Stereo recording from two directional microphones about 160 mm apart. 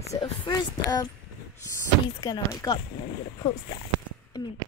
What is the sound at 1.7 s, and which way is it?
Speech, 25° left (ahead or behind).